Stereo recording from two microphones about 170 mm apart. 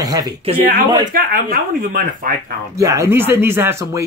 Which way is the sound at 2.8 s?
20° right (ahead or behind).